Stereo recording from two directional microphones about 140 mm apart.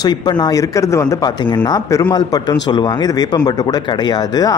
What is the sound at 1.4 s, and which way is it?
A man's voice, 35° left (ahead or behind).